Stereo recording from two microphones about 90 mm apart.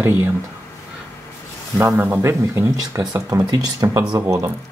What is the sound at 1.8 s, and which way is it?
Speech, 25° right (ahead or behind).